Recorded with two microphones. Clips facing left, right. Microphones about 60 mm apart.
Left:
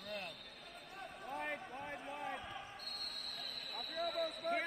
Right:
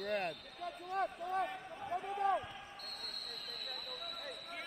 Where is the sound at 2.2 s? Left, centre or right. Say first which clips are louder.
Right 13 dB; right.